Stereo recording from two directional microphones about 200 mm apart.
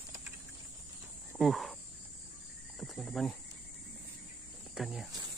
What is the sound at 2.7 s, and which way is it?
Cricket, centre (ahead or behind).